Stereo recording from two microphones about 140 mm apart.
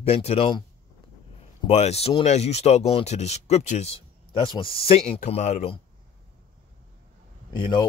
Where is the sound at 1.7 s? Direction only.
50° left (ahead or behind).